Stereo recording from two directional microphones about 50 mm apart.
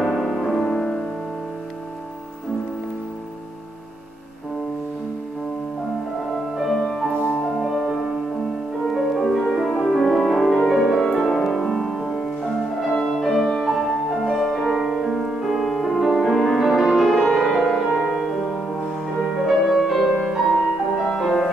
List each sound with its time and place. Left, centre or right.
0.0 s music: centre
0.6 s music: centre
6.9 s music: centre
7.2 s music: left
7.6 s music: centre
11.9 s music: centre
12.8 s music: centre
19.8 s music: centre
21.2 s music: centre